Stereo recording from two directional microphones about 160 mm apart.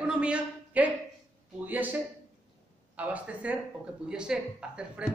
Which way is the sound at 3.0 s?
10° right (ahead or behind).